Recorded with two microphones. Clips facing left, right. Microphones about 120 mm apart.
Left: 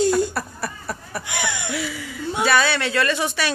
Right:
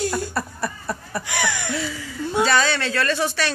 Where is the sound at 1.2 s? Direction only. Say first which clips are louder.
Right 2 dB; 15° left (ahead or behind).